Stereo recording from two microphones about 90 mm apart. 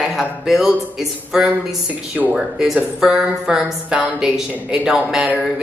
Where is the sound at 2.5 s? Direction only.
5° right (ahead or behind).